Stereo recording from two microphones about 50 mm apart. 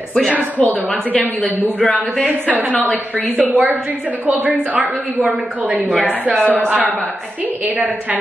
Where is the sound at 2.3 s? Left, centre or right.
Right.